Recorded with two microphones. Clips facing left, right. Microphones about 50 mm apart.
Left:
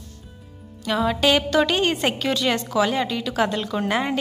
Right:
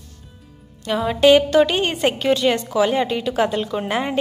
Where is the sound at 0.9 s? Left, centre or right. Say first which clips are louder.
Even; centre.